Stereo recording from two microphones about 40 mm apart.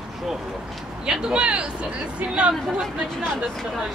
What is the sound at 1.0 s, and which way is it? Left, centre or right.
Speech, right.